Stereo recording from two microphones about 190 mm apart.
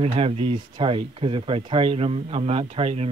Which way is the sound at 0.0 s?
30° right (ahead or behind).